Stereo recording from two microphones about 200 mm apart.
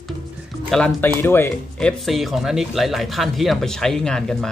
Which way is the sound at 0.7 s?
5° left (ahead or behind).